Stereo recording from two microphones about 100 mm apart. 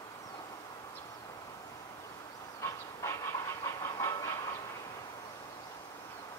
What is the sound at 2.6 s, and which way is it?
Train, 35° left (ahead or behind).